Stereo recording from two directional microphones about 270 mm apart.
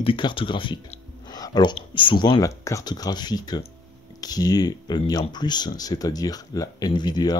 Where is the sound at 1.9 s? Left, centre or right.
Centre.